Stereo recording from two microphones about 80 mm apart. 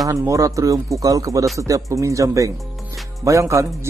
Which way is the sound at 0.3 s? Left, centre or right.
Right.